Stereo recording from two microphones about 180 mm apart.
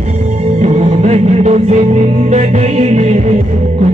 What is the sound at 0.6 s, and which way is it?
Music, 40° right (ahead or behind).